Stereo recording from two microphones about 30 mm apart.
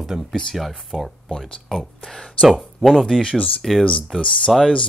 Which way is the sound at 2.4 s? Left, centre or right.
Centre.